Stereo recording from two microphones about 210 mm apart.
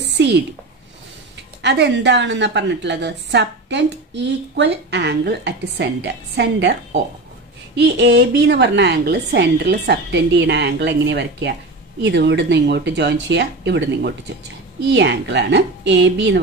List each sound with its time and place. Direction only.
1.6 s a woman's voice: 55° right (ahead or behind)